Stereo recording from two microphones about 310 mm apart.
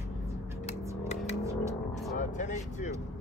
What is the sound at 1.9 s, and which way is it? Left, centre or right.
Vehicle, left.